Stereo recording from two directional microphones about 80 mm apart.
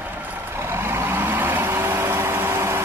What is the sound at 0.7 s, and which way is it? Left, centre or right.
Vehicle, right.